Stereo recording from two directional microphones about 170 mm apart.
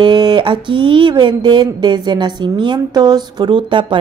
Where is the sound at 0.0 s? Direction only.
25° right (ahead or behind).